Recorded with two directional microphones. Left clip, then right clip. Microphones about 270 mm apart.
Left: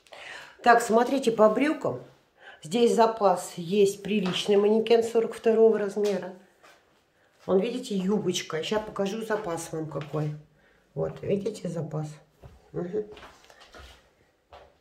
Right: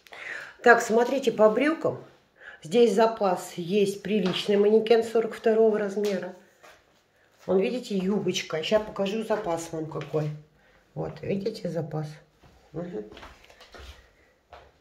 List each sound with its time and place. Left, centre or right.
0.0 s speech: centre
7.4 s speech: centre
11.0 s speech: centre
12.7 s speech: left